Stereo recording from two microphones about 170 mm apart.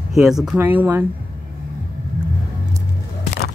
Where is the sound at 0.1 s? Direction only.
5° right (ahead or behind).